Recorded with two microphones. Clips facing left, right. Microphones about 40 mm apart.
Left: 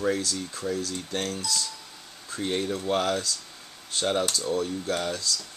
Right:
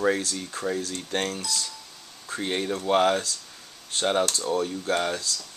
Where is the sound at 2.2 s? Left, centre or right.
Right.